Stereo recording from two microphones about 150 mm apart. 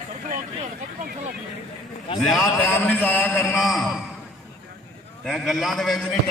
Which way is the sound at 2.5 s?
10° left (ahead or behind).